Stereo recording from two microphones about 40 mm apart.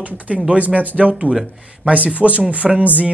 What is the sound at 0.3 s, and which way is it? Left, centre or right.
Speech, right.